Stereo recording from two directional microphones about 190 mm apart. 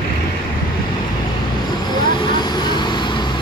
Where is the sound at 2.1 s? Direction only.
25° left (ahead or behind).